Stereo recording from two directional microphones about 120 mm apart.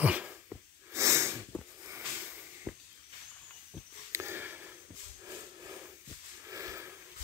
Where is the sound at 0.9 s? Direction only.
25° right (ahead or behind).